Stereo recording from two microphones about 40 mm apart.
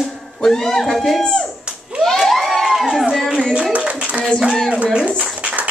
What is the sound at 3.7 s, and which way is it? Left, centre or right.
Clapping, right.